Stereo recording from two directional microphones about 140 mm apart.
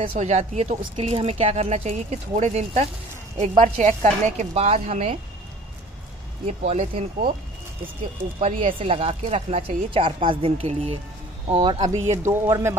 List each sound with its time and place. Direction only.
0.0 s speech: 55° right (ahead or behind)
0.9 s a woman's voice: 40° right (ahead or behind)
6.4 s speech: 50° right (ahead or behind)
8.5 s a woman's voice: 40° right (ahead or behind)
12.3 s speech: 20° right (ahead or behind)